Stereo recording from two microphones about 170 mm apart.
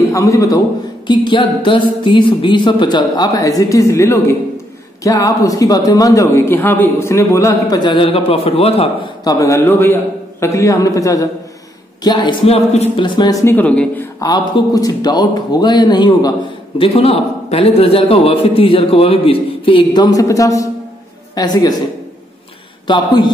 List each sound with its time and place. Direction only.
0.1 s a man's voice: 20° left (ahead or behind); by 8.9 s 35° left (ahead or behind)
9.2 s a man's voice: 20° left (ahead or behind)
14.2 s speech: 25° left (ahead or behind)
22.8 s speech: 25° left (ahead or behind)